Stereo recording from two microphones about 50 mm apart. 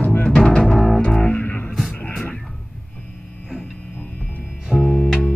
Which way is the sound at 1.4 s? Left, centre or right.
Left.